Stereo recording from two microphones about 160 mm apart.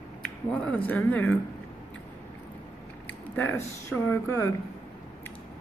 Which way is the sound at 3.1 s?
15° left (ahead or behind).